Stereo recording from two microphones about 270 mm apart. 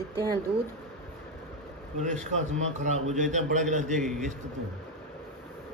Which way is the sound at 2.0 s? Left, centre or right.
Right.